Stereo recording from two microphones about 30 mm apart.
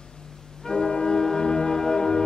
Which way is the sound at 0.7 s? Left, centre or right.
Left.